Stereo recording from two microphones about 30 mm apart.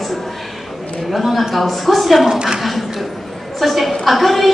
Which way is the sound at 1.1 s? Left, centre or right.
Centre.